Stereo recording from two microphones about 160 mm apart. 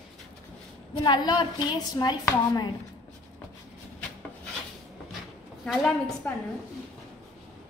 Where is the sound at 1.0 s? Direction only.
25° left (ahead or behind).